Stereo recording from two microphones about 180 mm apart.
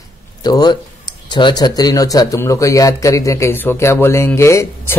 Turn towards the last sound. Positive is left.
turn(degrees=15)  # may be behind; listen again after turning